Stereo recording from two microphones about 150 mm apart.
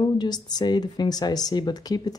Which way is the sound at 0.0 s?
25° left (ahead or behind).